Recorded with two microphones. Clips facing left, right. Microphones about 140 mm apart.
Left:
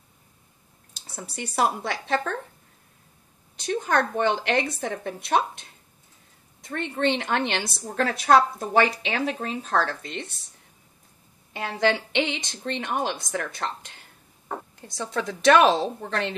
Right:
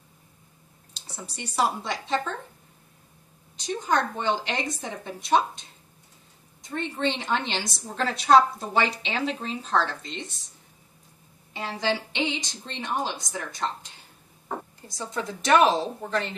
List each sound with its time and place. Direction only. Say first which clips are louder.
1.1 s a woman's voice: left 1 dB; 55° left (ahead or behind)
3.5 s a woman's voice: left 2 dB; 60° left (ahead or behind)
11.5 s a woman's voice: left 4 dB; 60° left (ahead or behind)
15.2 s speech: left 3 dB; 65° left (ahead or behind)